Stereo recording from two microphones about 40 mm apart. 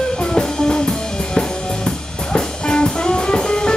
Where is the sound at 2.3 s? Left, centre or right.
Left.